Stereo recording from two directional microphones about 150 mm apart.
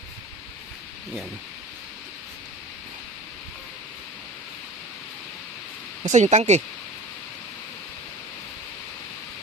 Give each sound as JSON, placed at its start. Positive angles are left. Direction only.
{"t": 6.0, "sound": "speech", "side_deg": -55}